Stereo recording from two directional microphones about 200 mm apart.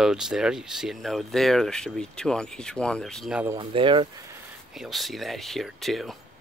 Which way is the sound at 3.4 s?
20° right (ahead or behind).